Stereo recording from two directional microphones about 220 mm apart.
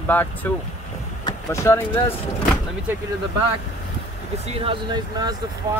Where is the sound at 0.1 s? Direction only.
10° left (ahead or behind).